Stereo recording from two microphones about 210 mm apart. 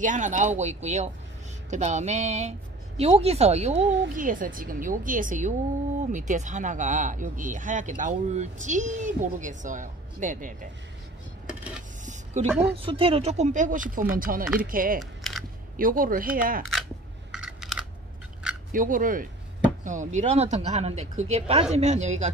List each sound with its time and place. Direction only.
0.0 s speech: 35° right (ahead or behind)
3.8 s a woman's voice: 60° right (ahead or behind)
4.1 s speech: 40° right (ahead or behind)
12.4 s speech: 30° right (ahead or behind)
15.0 s a sound: centre (ahead or behind)
15.7 s speech: 40° right (ahead or behind)
17.3 s scissors: centre (ahead or behind)
18.7 s speech: 40° right (ahead or behind)